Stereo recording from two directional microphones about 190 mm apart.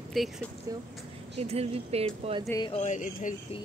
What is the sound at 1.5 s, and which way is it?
Speech, 30° right (ahead or behind).